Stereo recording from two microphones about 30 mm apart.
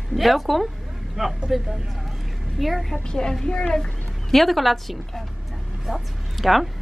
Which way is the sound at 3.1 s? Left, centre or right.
Left.